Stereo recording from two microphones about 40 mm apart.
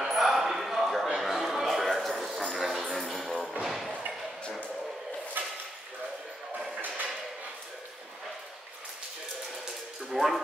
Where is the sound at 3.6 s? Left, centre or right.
Centre.